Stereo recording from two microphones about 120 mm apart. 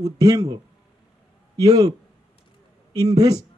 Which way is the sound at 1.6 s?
30° right (ahead or behind).